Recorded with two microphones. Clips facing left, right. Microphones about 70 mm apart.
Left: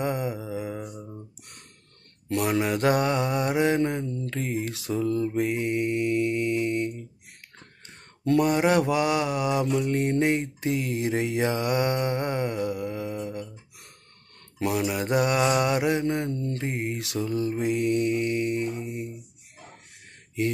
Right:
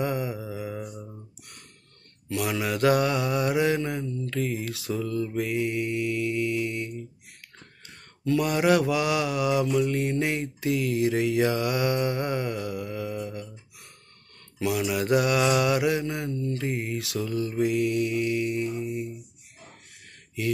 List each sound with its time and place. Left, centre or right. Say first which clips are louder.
0.0 s mantra: even; left
0.6 s mantra: left 1 dB; centre
0.8 s a sound: left 1 dB; centre
2.2 s mantra: left 3 dB; left
8.2 s mantra: left 3 dB; left
14.6 s mantra: even; left
16.5 s mantra: even; left